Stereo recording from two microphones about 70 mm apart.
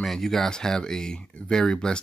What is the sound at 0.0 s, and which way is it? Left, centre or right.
Speech, centre.